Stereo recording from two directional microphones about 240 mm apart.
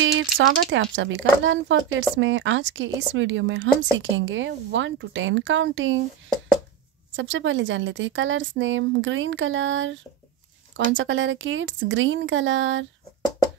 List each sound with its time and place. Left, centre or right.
0.0 s speech: right
7.2 s speech: right